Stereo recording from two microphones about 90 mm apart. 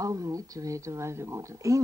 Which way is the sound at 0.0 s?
40° right (ahead or behind).